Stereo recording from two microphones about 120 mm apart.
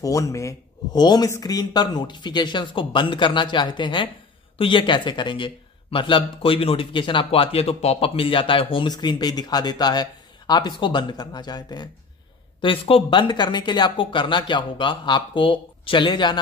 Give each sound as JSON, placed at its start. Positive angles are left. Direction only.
{"t": 0.0, "sound": "a man's voice", "side_deg": 30}
{"t": 12.6, "sound": "speech", "side_deg": 50}